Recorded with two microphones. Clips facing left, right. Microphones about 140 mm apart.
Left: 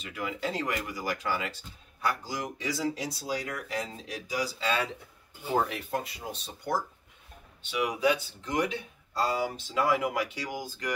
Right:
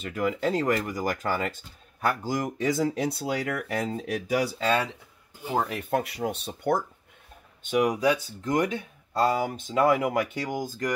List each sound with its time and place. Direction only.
0.0 s speech: 45° right (ahead or behind)
5.9 s speech: 65° right (ahead or behind)
7.6 s speech: 45° right (ahead or behind)